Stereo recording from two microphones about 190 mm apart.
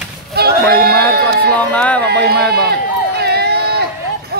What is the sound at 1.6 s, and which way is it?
Speech, 5° left (ahead or behind).